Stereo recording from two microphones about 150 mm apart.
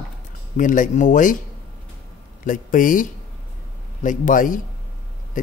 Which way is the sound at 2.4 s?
65° left (ahead or behind).